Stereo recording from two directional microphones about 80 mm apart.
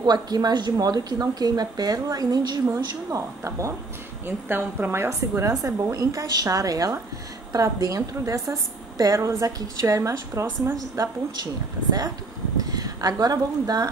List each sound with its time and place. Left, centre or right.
0.0 s speech: right
2.7 s speech: right
4.5 s a woman's voice: right
5.5 s a woman's voice: right
12.6 s speech: right